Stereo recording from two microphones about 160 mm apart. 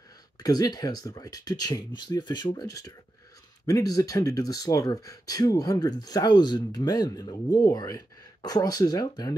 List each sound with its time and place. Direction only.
0.4 s speech: 25° left (ahead or behind)